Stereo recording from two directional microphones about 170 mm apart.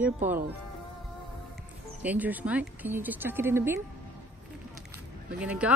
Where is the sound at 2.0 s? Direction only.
10° right (ahead or behind).